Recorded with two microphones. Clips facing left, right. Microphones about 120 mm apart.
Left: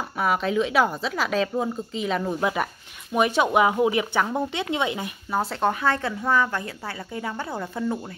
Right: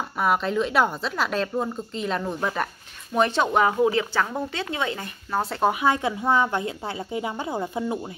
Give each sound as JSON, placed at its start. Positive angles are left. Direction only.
{"t": 0.2, "sound": "speech", "side_deg": 0}
{"t": 5.4, "sound": "speech", "side_deg": 0}
{"t": 5.7, "sound": "speech", "side_deg": -15}